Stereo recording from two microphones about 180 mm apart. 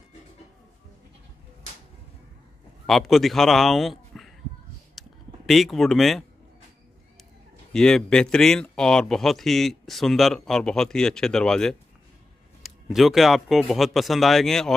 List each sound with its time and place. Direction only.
2.9 s a man's voice: centre (ahead or behind)
5.0 s a sound: centre (ahead or behind)
5.5 s speech: centre (ahead or behind)
7.7 s speech: 5° left (ahead or behind)